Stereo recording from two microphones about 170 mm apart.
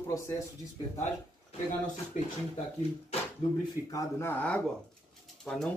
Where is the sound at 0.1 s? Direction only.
15° left (ahead or behind).